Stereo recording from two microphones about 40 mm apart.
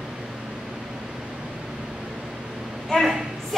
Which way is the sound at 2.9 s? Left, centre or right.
Left.